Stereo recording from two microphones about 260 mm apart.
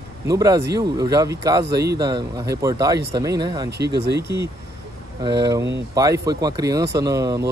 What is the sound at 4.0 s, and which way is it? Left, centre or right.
Speech, right.